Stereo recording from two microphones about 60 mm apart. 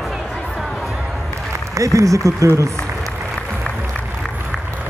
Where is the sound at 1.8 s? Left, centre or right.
Right.